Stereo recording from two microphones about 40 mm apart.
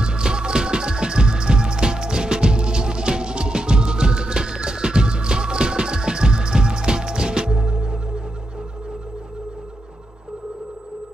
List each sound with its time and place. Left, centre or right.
0.0 s music: right